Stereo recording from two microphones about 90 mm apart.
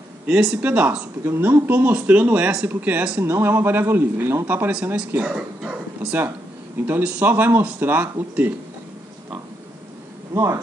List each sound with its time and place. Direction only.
0.3 s speech: 5° right (ahead or behind)
0.6 s speech: 15° right (ahead or behind)
6.9 s speech: 20° right (ahead or behind)
10.3 s speech: 35° right (ahead or behind)